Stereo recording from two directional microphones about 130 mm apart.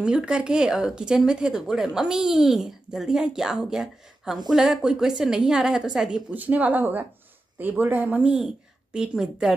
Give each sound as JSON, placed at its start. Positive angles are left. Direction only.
{"t": 0.0, "sound": "speech", "side_deg": -5}